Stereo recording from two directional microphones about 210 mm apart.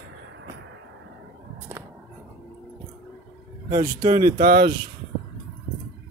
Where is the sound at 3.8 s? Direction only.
15° right (ahead or behind).